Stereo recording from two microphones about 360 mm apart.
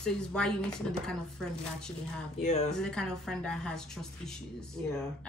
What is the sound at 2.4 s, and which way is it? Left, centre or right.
Speech, centre.